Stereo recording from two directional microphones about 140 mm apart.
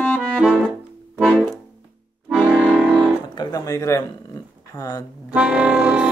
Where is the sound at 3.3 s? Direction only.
30° left (ahead or behind).